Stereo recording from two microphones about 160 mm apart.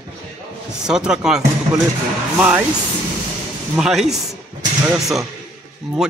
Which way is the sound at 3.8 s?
Centre (ahead or behind).